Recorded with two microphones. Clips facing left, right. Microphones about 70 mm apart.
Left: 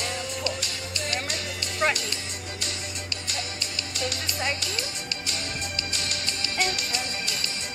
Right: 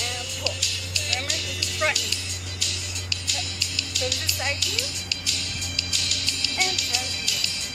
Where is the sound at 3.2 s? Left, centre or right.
Left.